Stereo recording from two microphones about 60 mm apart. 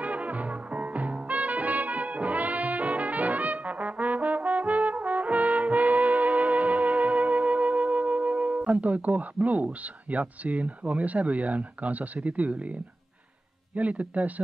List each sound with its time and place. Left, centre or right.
0.0 s brass instrument: right
13.7 s a man's voice: right